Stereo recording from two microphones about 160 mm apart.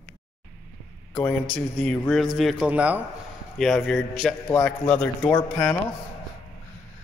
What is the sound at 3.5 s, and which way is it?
A man's voice, centre (ahead or behind).